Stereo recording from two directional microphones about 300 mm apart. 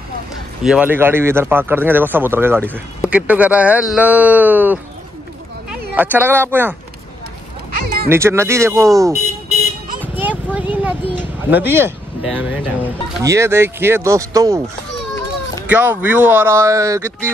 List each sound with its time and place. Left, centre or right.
0.7 s speech: centre
7.7 s a sound: right
8.1 s speech: centre
10.1 s a sound: centre
11.5 s speech: centre
15.6 s speech: centre